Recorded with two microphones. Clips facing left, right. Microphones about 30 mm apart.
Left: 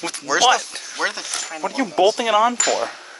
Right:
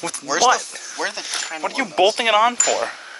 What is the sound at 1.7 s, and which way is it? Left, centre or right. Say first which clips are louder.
Speech: even; right.